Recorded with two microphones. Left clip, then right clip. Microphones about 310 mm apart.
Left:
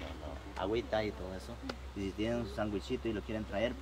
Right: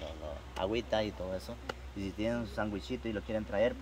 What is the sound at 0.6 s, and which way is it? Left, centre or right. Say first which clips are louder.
Speech: right 1 dB; right.